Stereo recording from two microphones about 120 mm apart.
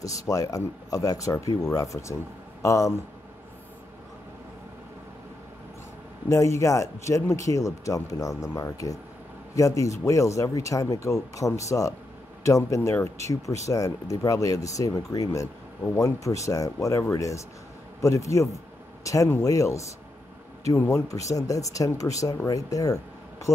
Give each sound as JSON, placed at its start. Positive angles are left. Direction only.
{"t": 0.2, "sound": "speech", "side_deg": 30}
{"t": 6.2, "sound": "speech", "side_deg": 25}